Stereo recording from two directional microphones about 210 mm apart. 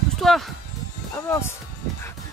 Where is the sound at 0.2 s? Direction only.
Centre (ahead or behind).